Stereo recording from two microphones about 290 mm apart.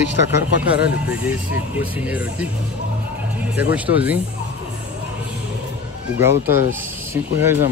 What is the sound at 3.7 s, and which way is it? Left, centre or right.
Speech, centre.